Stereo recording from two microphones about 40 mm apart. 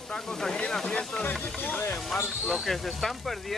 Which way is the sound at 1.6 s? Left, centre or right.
Left.